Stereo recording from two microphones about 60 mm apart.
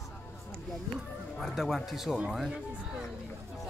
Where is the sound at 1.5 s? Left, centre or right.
Centre.